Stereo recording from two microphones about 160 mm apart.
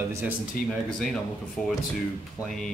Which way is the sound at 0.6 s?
65° left (ahead or behind).